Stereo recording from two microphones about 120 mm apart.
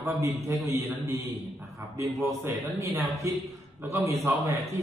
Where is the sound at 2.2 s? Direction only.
25° right (ahead or behind).